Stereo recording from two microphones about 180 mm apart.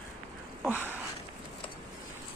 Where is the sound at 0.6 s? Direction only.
5° right (ahead or behind).